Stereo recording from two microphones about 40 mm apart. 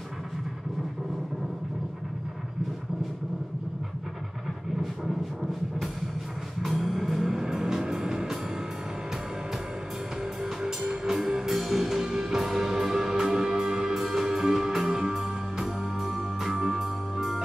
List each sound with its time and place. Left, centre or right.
5.0 s thunder: centre
6.6 s music: centre
10.4 s music: centre